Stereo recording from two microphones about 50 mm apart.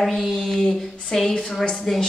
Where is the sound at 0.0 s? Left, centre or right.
Centre.